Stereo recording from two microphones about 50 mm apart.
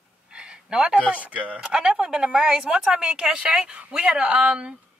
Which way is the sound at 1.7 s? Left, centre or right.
Centre.